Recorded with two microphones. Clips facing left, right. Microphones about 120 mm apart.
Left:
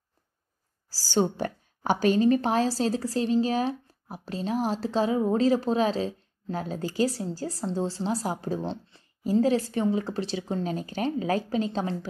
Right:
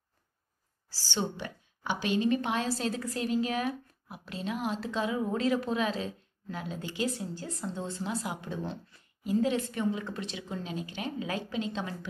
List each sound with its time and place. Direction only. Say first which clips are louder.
0.8 s a woman's voice: left 8 dB; 40° left (ahead or behind)